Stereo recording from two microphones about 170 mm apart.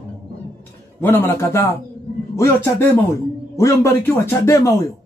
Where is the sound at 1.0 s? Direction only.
10° left (ahead or behind).